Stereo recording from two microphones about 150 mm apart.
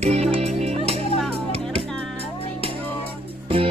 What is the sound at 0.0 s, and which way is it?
Music, 45° right (ahead or behind).